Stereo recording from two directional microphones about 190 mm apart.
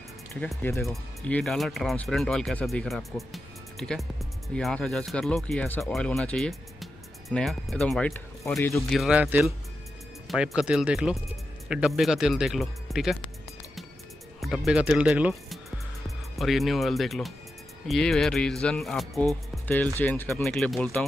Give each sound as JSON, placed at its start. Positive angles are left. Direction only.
{"t": 0.5, "sound": "speech", "side_deg": 10}
{"t": 8.7, "sound": "speech", "side_deg": 0}
{"t": 14.4, "sound": "speech", "side_deg": 0}
{"t": 20.0, "sound": "speech", "side_deg": 10}